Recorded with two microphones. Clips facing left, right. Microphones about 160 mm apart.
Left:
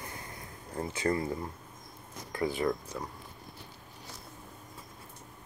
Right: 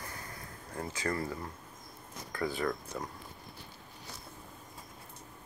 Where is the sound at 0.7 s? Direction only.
25° left (ahead or behind).